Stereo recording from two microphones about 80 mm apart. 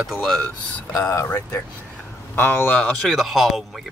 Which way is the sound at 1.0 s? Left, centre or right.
Left.